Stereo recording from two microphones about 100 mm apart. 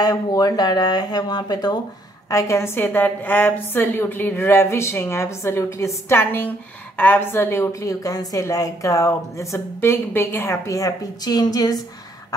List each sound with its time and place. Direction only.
0.0 s a woman's voice: 40° left (ahead or behind)
2.2 s a woman's voice: 30° left (ahead or behind)